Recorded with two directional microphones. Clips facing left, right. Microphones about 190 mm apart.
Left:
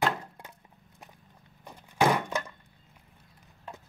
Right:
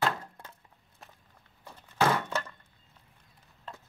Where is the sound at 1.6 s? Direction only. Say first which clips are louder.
Left 2 dB; 15° left (ahead or behind).